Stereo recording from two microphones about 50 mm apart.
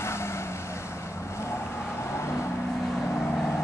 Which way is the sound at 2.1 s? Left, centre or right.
Left.